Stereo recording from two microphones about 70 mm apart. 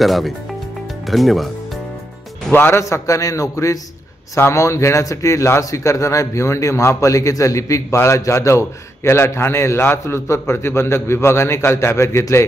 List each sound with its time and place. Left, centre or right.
0.0 s speech: centre
1.0 s music: centre
2.5 s a man's voice: left
2.8 s a man's voice: left